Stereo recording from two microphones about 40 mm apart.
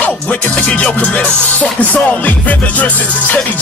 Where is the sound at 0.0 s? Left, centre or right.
Left.